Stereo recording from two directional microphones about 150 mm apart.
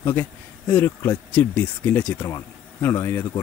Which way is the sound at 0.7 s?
10° left (ahead or behind).